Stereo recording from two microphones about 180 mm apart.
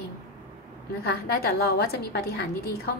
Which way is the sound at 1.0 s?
60° left (ahead or behind).